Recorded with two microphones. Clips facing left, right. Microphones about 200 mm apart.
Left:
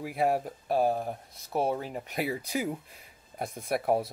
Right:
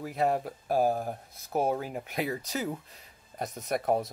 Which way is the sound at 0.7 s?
40° right (ahead or behind).